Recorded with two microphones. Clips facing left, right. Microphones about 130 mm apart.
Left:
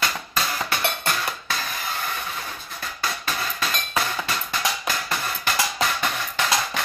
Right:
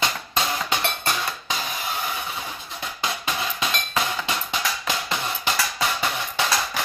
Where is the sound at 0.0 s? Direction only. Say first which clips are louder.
Right 1 dB; 20° right (ahead or behind).